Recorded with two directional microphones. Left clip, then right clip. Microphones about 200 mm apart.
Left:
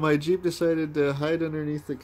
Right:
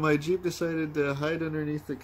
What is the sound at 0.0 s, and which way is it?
Speech, 30° left (ahead or behind).